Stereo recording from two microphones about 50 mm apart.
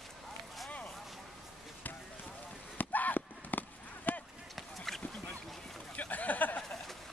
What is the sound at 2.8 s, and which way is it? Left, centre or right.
Clip-clop, left.